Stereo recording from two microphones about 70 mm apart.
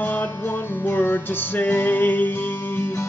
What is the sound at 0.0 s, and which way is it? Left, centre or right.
Music, left.